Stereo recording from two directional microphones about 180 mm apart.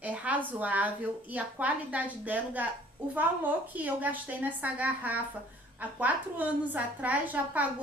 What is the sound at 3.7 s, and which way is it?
A woman's voice, 10° right (ahead or behind).